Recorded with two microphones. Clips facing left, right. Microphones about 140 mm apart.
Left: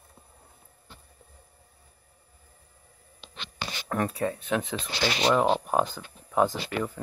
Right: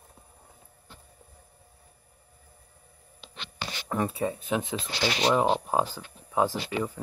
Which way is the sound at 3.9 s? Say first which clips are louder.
Even; 10° right (ahead or behind).